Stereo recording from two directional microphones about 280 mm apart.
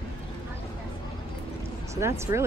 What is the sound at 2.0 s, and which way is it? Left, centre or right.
Speech, centre.